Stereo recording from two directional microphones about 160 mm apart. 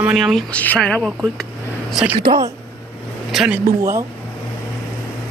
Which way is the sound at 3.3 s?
5° right (ahead or behind).